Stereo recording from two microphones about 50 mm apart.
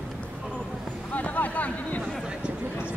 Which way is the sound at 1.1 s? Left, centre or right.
Left.